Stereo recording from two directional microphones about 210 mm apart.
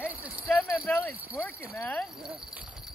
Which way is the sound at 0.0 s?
5° right (ahead or behind).